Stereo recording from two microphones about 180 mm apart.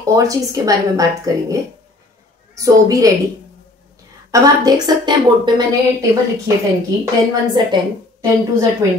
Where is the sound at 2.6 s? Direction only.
20° right (ahead or behind).